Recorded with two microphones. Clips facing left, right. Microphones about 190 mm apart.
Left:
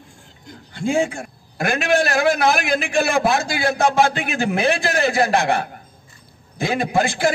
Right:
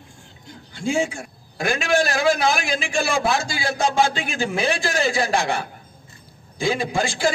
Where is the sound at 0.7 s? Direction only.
55° left (ahead or behind).